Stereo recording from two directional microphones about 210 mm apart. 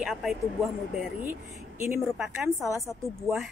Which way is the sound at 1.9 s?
5° right (ahead or behind).